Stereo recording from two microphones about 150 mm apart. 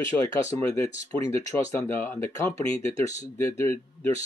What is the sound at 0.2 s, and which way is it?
Speech, 20° left (ahead or behind).